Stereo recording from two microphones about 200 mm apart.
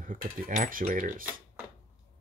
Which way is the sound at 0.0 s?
40° right (ahead or behind).